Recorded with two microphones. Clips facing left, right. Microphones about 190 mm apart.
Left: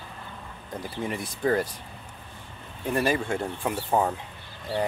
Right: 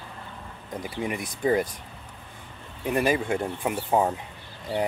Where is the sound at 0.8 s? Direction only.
15° right (ahead or behind).